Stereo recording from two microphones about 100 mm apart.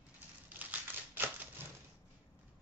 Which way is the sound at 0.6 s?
20° right (ahead or behind).